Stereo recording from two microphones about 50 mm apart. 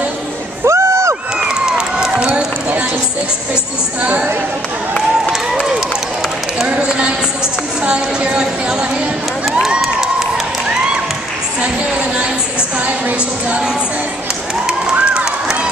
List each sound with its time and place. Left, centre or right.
0.7 s a sound: right
1.5 s run: centre
2.1 s run: right
4.0 s a sound: right
5.3 s run: centre
6.8 s music: right
7.8 s a sound: right
9.8 s crowd: centre
14.7 s run: centre